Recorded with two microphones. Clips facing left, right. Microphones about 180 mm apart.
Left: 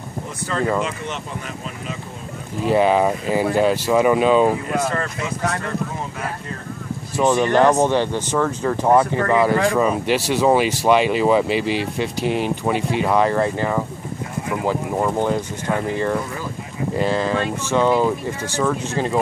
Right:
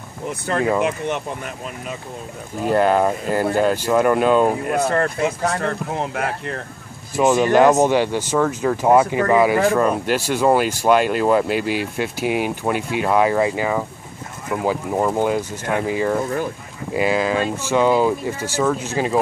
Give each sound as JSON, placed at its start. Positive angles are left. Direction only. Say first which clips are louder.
{"t": 0.8, "sound": "speech", "louder": "right 5 dB", "side_deg": -55}
{"t": 2.7, "sound": "speech", "louder": "even", "side_deg": 0}
{"t": 4.6, "sound": "speech", "louder": "right 3 dB", "side_deg": -55}
{"t": 7.2, "sound": "speech", "louder": "right 2 dB", "side_deg": -10}
{"t": 9.0, "sound": "speech", "louder": "right 1 dB", "side_deg": -20}
{"t": 9.3, "sound": "speech", "louder": "right 1 dB", "side_deg": -10}